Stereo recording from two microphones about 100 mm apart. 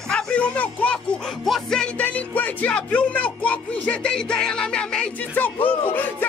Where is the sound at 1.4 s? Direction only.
5° left (ahead or behind).